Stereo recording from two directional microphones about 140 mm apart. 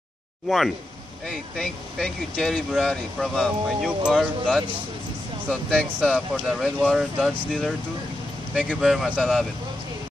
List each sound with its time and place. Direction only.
0.5 s speech: centre (ahead or behind)
5.9 s speech: 5° right (ahead or behind)